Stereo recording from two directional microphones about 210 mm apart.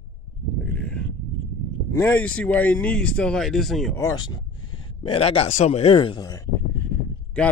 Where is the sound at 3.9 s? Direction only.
20° left (ahead or behind).